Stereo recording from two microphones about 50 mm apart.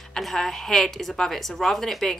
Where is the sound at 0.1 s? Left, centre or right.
Centre.